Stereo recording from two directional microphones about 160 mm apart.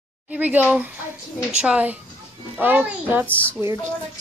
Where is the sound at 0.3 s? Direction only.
10° right (ahead or behind).